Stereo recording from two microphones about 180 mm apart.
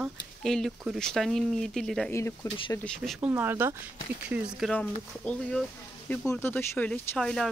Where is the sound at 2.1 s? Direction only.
15° left (ahead or behind).